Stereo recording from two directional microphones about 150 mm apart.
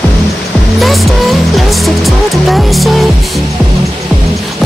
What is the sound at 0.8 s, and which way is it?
Speech, centre (ahead or behind).